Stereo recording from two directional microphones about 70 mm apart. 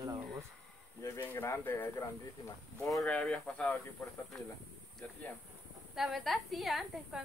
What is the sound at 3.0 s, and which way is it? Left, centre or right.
Speech, centre.